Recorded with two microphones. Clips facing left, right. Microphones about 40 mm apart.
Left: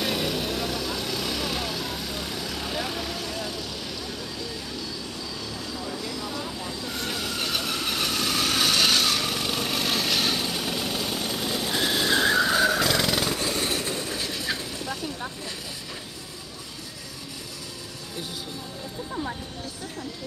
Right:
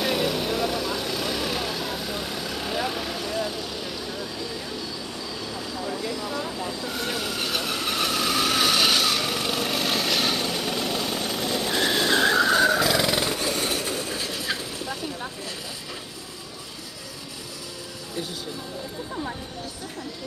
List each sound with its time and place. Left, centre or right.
0.0 s vehicle: centre
5.5 s vehicle: centre
13.3 s vehicle: centre